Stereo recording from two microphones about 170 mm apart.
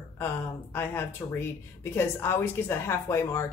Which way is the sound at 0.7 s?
10° left (ahead or behind).